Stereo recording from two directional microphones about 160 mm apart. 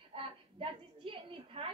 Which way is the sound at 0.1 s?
35° right (ahead or behind).